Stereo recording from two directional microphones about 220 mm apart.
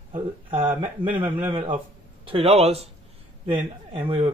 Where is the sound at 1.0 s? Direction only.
40° right (ahead or behind).